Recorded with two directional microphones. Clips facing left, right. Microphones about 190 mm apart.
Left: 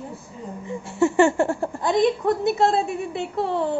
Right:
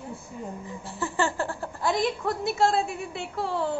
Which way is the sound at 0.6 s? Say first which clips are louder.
Left 17 dB; 25° left (ahead or behind).